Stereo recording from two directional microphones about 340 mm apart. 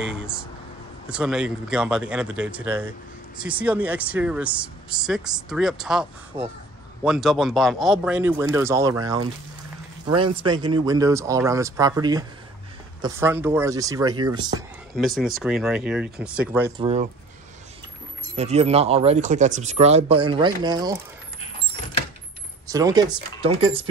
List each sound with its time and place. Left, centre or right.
1.0 s speech: centre
15.0 s speech: centre
18.3 s speech: centre
22.7 s speech: centre